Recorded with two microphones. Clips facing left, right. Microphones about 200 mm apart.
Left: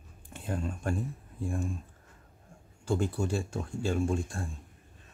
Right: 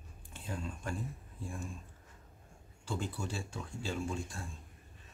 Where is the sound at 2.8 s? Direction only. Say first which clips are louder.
Left 9 dB; 45° left (ahead or behind).